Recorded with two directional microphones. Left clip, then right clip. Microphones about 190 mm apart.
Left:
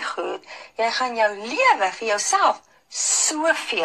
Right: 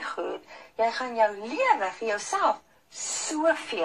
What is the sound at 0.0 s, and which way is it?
Speech, 30° left (ahead or behind).